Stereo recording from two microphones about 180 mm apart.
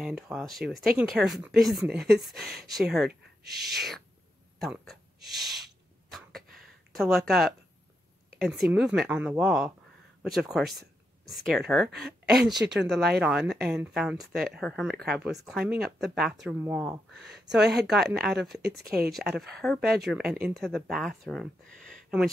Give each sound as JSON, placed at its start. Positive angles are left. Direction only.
{"t": 0.0, "sound": "speech", "side_deg": 0}
{"t": 6.0, "sound": "a sound", "side_deg": 0}
{"t": 7.0, "sound": "speech", "side_deg": 0}
{"t": 17.1, "sound": "speech", "side_deg": -70}
{"t": 17.5, "sound": "speech", "side_deg": -5}
{"t": 18.8, "sound": "speech", "side_deg": -60}
{"t": 19.1, "sound": "speech", "side_deg": 0}